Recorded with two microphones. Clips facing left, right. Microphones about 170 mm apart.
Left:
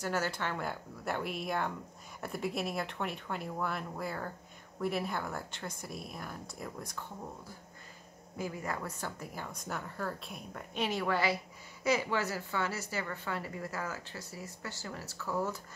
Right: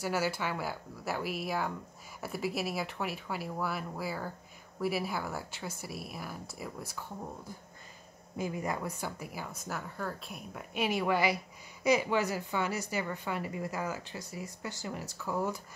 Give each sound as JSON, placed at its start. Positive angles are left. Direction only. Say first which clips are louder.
{"t": 0.0, "sound": "speech", "louder": "right 2 dB", "side_deg": -10}
{"t": 8.4, "sound": "a woman's voice", "louder": "right 3 dB", "side_deg": -20}